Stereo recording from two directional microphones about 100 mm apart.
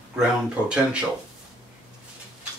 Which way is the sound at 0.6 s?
10° right (ahead or behind).